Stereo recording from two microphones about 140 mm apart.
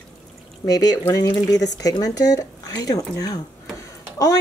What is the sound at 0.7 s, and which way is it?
Speech, 25° left (ahead or behind).